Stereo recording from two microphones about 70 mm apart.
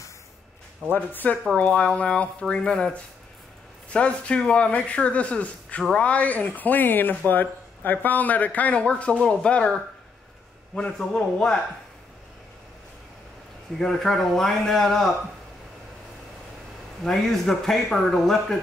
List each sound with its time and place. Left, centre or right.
0.9 s speech: left; by 11.6 s centre
13.7 s speech: centre
17.0 s speech: centre